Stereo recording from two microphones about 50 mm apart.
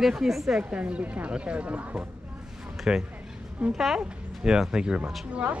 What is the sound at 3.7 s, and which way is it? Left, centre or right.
Speech, centre.